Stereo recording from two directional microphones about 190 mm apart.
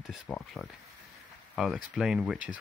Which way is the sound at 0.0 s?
Centre (ahead or behind).